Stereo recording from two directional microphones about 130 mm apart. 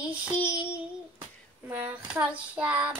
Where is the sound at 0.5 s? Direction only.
10° right (ahead or behind).